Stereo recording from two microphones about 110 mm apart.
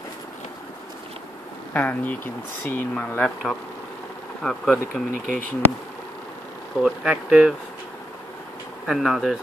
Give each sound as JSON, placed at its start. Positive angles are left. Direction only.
{"t": 1.7, "sound": "speech", "side_deg": 15}
{"t": 6.8, "sound": "speech", "side_deg": -5}
{"t": 8.8, "sound": "speech", "side_deg": -5}